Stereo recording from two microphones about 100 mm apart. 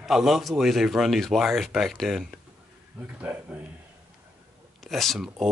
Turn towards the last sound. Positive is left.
turn(degrees=0)  # may be behind; listen again after turning